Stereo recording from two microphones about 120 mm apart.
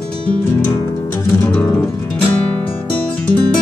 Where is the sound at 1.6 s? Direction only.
5° left (ahead or behind).